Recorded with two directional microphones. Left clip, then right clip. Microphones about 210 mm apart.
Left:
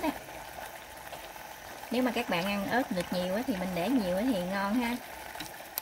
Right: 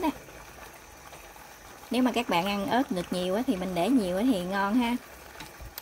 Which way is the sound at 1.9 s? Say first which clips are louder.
Right 3 dB; 35° right (ahead or behind).